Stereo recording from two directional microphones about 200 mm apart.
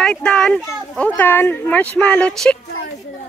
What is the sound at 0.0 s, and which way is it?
Speech, 5° left (ahead or behind).